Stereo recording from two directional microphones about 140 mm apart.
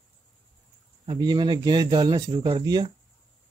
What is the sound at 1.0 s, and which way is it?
Speech, 35° right (ahead or behind).